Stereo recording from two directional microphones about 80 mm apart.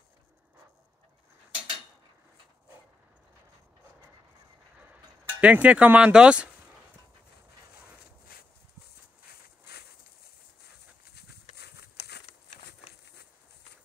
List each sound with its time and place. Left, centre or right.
5.4 s speech: centre